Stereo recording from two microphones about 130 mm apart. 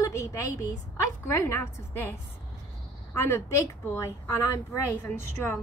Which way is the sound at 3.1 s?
20° left (ahead or behind).